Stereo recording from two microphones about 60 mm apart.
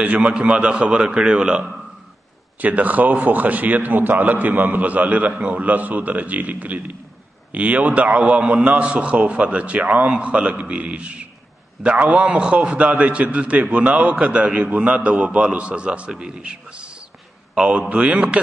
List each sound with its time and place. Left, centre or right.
0.0 s a man's voice: right
2.6 s a man's voice: right